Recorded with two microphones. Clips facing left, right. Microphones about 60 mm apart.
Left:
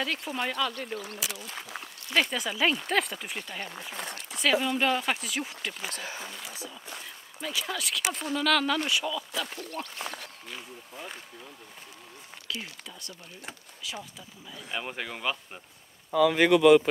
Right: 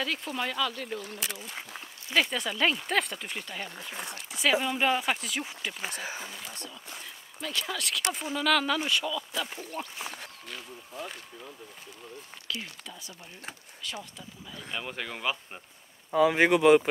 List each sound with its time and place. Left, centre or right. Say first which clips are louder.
0.0 s speech: left 1 dB; centre
5.9 s speech: right 1 dB; centre
6.2 s speech: left 1 dB; centre
9.8 s speech: even; centre
12.4 s speech: even; centre
16.1 s speech: left 1 dB; right